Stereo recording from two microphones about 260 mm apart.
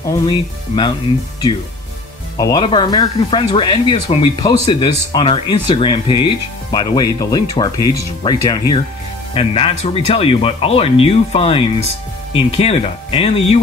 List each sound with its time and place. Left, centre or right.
0.2 s speech: centre
2.3 s speech: centre